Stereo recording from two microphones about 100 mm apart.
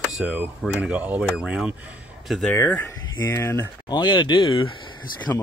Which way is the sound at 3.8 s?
50° left (ahead or behind).